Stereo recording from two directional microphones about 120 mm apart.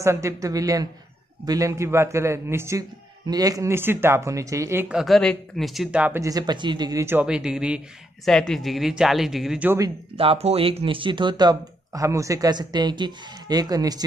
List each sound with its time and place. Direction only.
0.0 s speech: 25° right (ahead or behind)
4.8 s speech: 5° right (ahead or behind)
6.1 s speech: 30° right (ahead or behind)
7.2 s speech: 5° right (ahead or behind)
8.3 s speech: 5° left (ahead or behind)
10.1 s speech: 55° right (ahead or behind); by 14.0 s 30° right (ahead or behind)